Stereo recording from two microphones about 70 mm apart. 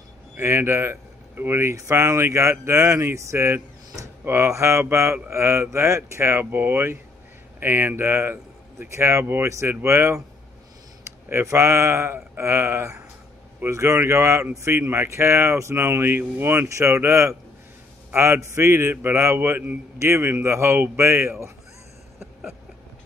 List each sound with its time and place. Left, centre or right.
0.4 s speech: right
11.2 s speech: right
16.6 s speech: right